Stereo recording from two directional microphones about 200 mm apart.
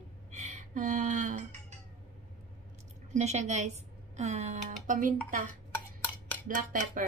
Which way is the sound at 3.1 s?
35° right (ahead or behind).